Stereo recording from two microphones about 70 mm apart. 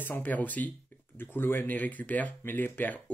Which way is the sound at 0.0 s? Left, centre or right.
Left.